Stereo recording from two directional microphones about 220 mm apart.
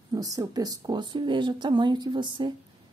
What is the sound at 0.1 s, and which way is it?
Speech, 15° right (ahead or behind).